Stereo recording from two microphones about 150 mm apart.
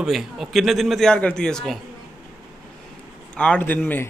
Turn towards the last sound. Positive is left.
turn(degrees=10)  # may be behind; listen again after turning